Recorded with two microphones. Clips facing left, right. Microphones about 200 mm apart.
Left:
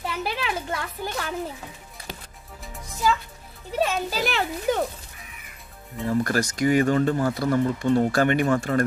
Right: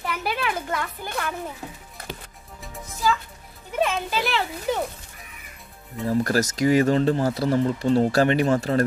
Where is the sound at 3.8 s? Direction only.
40° left (ahead or behind).